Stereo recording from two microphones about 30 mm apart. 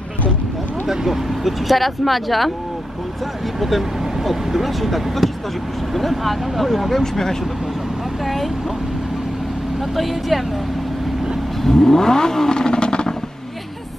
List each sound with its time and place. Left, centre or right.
0.8 s speech: centre
3.5 s speech: centre
7.0 s speech: centre
11.6 s vehicle: centre; by 13.1 s left